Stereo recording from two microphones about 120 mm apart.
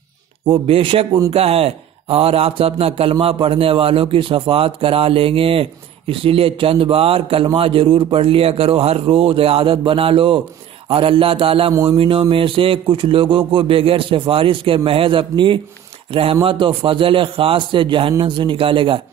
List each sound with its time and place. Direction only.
0.5 s speech: 50° right (ahead or behind)